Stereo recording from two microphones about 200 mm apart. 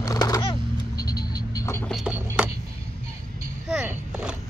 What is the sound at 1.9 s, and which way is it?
Music, 5° right (ahead or behind).